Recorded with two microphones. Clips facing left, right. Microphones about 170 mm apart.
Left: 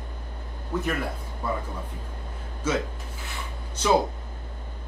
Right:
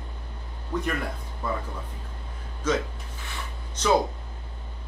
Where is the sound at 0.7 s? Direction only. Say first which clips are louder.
Even; 5° left (ahead or behind).